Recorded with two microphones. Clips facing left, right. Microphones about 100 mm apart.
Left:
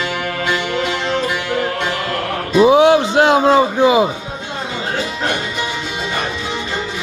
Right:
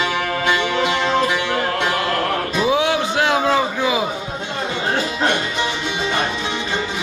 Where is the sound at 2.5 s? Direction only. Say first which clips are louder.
Left 10 dB; 35° left (ahead or behind).